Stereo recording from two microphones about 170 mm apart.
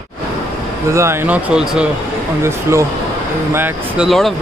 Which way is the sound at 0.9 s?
15° right (ahead or behind).